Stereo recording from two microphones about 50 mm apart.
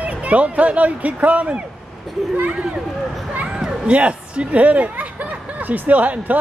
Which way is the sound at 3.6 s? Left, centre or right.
Right.